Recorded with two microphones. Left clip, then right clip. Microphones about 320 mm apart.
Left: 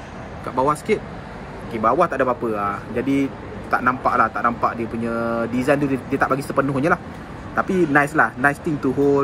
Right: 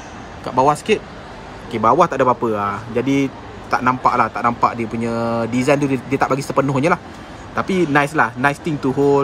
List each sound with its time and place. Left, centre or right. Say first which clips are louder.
0.6 s speech: right 4 dB; right